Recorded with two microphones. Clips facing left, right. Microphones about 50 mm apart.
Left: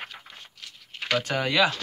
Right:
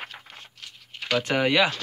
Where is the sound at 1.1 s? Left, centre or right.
Centre.